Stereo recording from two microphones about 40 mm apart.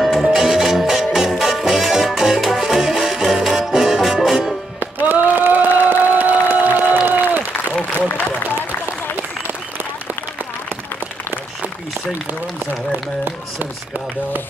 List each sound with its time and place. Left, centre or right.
0.0 s music: centre
0.3 s music: centre
4.7 s a sound: right
7.1 s applause: right